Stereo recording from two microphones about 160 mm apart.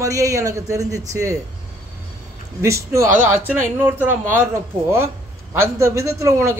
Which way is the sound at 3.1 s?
50° right (ahead or behind).